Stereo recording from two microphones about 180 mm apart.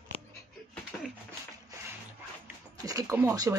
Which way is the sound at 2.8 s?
20° right (ahead or behind).